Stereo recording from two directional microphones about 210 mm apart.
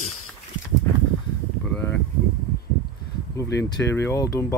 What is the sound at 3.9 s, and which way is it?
Speech, 15° left (ahead or behind).